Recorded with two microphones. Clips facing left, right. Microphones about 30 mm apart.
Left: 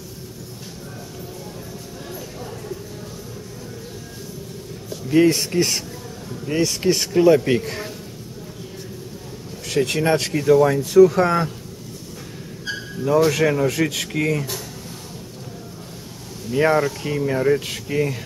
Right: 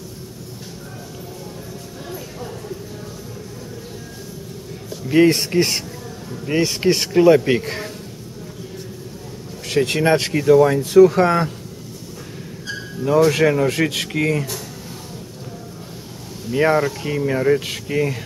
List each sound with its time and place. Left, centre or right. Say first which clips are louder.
5.0 s speech: right 2 dB; centre
9.7 s speech: right 2 dB; centre
10.4 s speech: right 2 dB; centre
13.3 s speech: right 2 dB; centre
16.4 s speech: right 1 dB; centre